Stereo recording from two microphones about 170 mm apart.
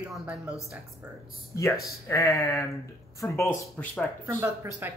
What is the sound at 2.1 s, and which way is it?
Speech, 15° left (ahead or behind).